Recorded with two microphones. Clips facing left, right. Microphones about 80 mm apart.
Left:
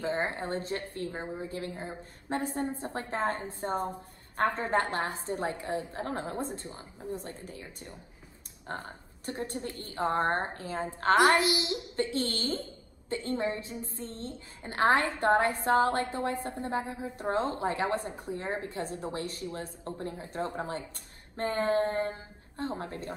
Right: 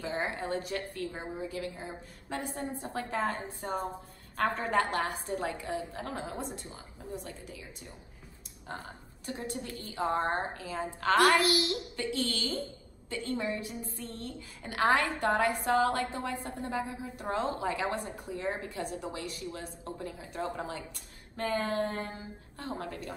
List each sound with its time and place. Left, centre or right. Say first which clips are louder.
0.0 s a woman's voice: left 3 dB; left
9.8 s a woman's voice: left 1 dB; left
10.4 s speech: left 1 dB; left
11.1 s a woman's voice: even; left
12.0 s a woman's voice: left 4 dB; left